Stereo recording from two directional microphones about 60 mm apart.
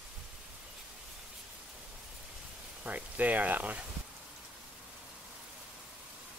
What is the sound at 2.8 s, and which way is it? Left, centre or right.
Speech, right.